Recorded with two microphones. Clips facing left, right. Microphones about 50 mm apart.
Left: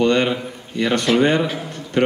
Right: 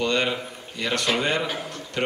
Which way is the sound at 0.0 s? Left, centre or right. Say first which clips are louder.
Left 7 dB; left.